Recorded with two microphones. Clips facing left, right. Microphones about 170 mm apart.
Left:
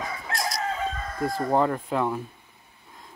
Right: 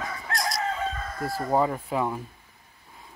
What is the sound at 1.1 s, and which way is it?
Speech, centre (ahead or behind).